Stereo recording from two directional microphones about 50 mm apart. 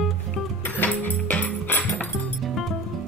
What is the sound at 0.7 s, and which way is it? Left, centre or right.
Music, left.